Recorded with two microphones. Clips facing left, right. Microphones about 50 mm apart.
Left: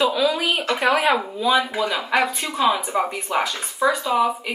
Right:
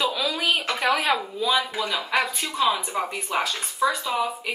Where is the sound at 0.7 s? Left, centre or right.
Left.